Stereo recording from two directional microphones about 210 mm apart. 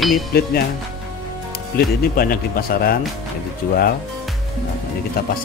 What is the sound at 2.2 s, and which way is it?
Speech, 45° left (ahead or behind).